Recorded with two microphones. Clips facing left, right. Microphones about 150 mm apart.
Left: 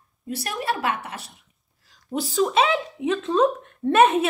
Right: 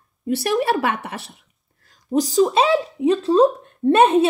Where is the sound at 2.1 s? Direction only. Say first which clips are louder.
Right 8 dB; 15° right (ahead or behind).